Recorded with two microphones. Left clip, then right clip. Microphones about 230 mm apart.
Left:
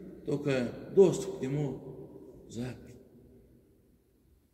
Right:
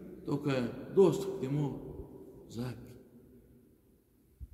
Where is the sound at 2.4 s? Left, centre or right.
Centre.